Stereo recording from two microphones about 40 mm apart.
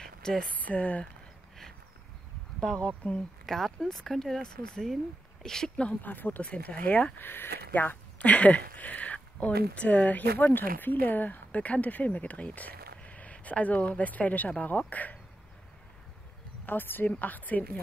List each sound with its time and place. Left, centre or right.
0.2 s speech: centre
0.6 s speech: left
3.0 s speech: left
3.4 s speech: centre
6.0 s speech: left
6.4 s speech: left
7.2 s speech: left
8.2 s speech: left
16.6 s speech: left
17.2 s speech: left